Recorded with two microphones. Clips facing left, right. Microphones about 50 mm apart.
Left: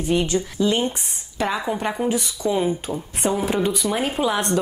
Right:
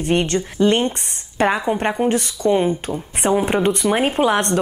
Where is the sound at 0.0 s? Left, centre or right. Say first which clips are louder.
Right 2 dB; right.